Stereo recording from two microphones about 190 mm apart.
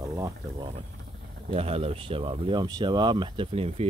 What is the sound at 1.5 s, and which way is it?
Speech, 30° right (ahead or behind).